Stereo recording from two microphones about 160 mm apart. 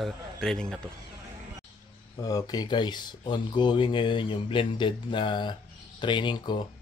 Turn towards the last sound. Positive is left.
turn(degrees=30)  # may be behind; listen again after turning